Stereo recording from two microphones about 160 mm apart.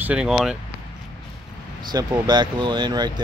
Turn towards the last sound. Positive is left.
turn(degrees=-25)  # may be behind; listen again after turning